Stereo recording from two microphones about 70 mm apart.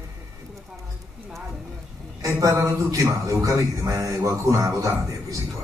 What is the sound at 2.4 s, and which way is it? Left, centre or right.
Speech, right.